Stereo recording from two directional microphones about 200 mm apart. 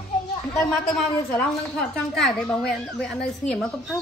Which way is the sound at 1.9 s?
5° left (ahead or behind).